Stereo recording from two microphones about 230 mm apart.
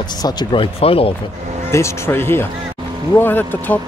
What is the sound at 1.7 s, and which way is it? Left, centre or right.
Speech, centre.